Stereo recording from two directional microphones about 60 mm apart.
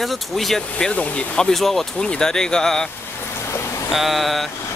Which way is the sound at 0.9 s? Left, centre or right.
Left.